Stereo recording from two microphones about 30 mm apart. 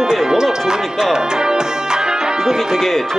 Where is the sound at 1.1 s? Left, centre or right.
Right.